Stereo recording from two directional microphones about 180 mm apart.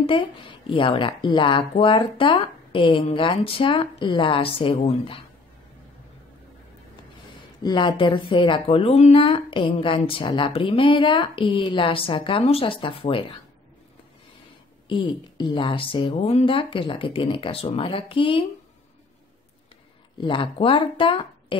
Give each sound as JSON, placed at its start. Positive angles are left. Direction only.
{"t": 0.0, "sound": "speech", "side_deg": 30}
{"t": 7.6, "sound": "speech", "side_deg": 25}
{"t": 14.9, "sound": "speech", "side_deg": 25}
{"t": 20.2, "sound": "speech", "side_deg": 25}